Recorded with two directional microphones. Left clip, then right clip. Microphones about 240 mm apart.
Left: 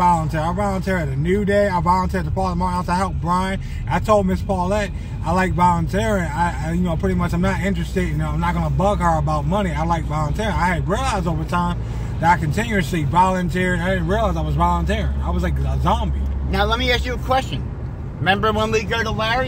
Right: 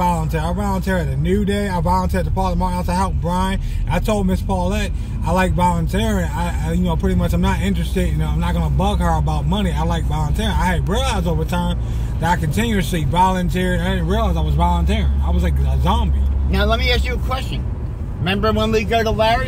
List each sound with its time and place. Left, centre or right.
0.0 s a man's voice: centre
16.4 s speech: left